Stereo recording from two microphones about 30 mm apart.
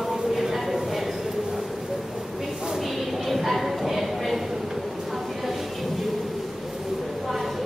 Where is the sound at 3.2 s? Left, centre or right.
Centre.